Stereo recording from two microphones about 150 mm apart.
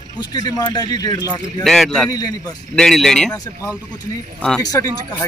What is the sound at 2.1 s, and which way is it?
Speech, 25° left (ahead or behind).